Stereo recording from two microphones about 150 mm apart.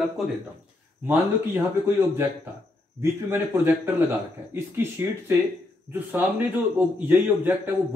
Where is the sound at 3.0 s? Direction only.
15° right (ahead or behind).